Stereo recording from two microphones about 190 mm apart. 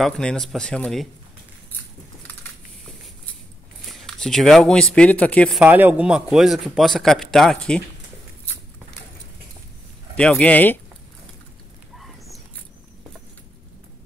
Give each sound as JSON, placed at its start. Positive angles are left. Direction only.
{"t": 0.0, "sound": "a man's voice", "side_deg": 5}
{"t": 3.8, "sound": "speech", "side_deg": 0}
{"t": 5.6, "sound": "a man's voice", "side_deg": -10}
{"t": 10.1, "sound": "speech", "side_deg": 5}